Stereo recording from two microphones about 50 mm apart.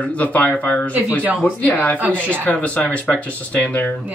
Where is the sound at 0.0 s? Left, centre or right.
Left.